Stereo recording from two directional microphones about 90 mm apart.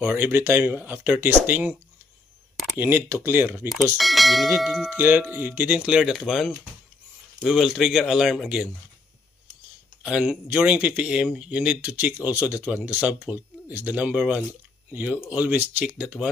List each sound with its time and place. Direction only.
0.0 s speech: 20° right (ahead or behind)
2.8 s speech: 25° right (ahead or behind)
3.9 s speech: centre (ahead or behind)
4.9 s speech: 20° right (ahead or behind)
10.0 s speech: 10° right (ahead or behind)